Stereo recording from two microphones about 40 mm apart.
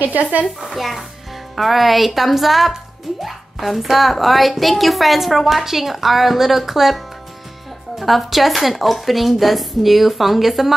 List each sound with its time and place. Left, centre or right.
0.2 s speech: right
0.7 s speech: centre
8.0 s speech: centre